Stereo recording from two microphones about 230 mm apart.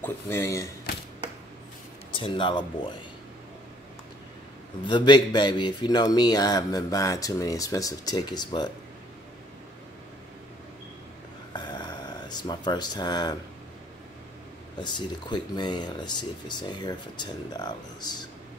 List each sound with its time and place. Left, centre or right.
0.0 s speech: centre
2.1 s speech: left
4.8 s speech: centre
11.5 s a sound: centre
14.8 s speech: centre